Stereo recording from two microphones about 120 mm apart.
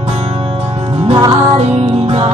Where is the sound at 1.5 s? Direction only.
60° right (ahead or behind).